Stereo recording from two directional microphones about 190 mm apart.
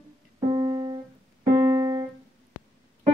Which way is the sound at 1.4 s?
15° right (ahead or behind).